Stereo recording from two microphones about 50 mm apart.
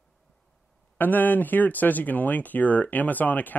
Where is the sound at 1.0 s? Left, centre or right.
Left.